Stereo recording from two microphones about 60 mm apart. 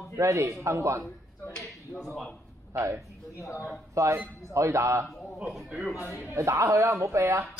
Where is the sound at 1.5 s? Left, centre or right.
Centre.